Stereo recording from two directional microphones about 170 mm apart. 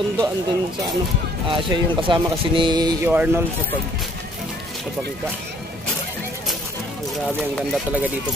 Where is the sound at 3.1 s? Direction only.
10° right (ahead or behind).